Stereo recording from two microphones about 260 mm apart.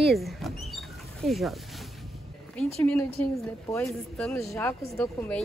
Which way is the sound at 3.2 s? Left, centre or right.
Centre.